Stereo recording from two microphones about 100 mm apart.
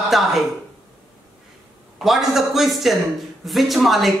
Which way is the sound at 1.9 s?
Centre (ahead or behind).